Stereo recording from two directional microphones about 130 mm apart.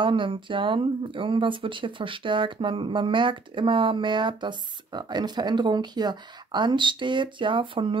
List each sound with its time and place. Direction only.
0.0 s speech: 40° right (ahead or behind)